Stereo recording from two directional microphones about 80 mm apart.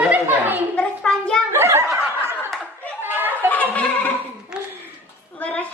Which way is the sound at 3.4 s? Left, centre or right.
Left.